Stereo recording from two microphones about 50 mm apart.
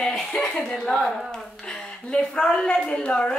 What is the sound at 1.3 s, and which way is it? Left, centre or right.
A woman's voice, centre.